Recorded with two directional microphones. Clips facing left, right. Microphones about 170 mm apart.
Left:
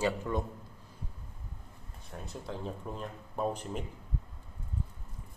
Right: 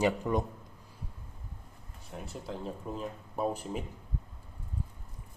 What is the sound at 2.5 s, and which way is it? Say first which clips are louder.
Speech: right 1 dB; 5° right (ahead or behind).